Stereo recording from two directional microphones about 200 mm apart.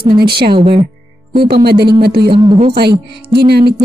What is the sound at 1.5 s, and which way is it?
Speech, 55° right (ahead or behind).